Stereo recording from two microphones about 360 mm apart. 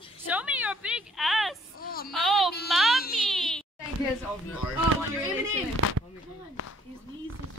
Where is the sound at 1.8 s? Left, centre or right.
Left.